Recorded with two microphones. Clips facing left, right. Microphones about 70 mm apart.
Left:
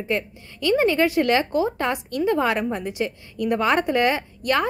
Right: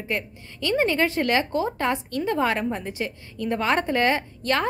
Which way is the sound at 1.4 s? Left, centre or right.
Left.